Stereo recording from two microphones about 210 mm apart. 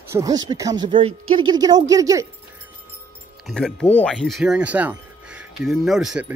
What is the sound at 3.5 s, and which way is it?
Speech, 5° left (ahead or behind).